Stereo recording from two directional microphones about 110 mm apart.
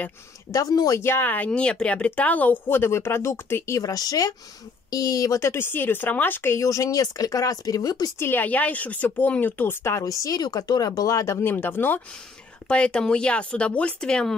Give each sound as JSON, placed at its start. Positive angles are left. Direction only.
{"t": 0.5, "sound": "speech", "side_deg": 30}
{"t": 1.0, "sound": "speech", "side_deg": 20}
{"t": 8.2, "sound": "speech", "side_deg": 20}
{"t": 11.4, "sound": "speech", "side_deg": 15}